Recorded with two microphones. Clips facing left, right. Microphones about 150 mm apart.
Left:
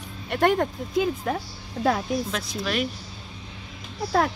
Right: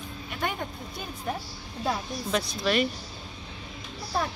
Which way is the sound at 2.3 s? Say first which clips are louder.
Right 2 dB; centre (ahead or behind).